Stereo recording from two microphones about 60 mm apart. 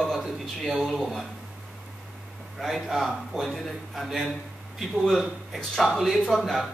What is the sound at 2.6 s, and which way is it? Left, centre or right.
A man's voice, centre.